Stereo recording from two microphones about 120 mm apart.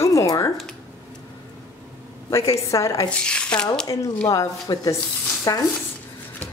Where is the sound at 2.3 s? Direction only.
25° left (ahead or behind).